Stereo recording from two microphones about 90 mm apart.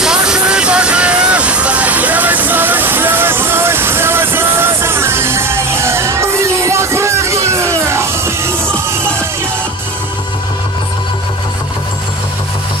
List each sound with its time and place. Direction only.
0.0 s vehicle: 10° right (ahead or behind); by 9.2 s 30° right (ahead or behind)